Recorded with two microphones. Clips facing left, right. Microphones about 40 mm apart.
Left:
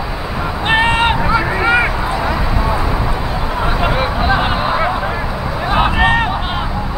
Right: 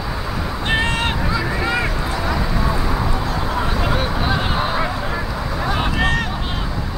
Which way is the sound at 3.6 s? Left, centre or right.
Centre.